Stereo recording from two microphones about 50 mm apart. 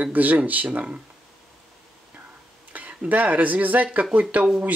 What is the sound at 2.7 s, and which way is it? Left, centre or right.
Speech, right.